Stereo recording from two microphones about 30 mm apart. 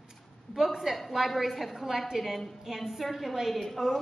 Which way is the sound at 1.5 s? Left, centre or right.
Centre.